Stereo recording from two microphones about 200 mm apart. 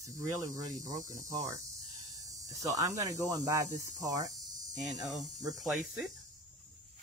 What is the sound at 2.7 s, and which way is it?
Speech, 15° right (ahead or behind).